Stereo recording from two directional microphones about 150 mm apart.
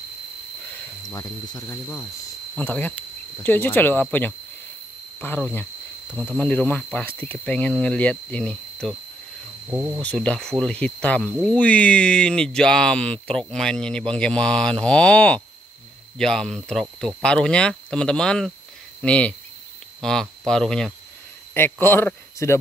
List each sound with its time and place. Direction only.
1.1 s speech: 20° left (ahead or behind)
9.7 s speech: 15° right (ahead or behind)
10.0 s speech: 5° left (ahead or behind)
21.5 s speech: 15° left (ahead or behind)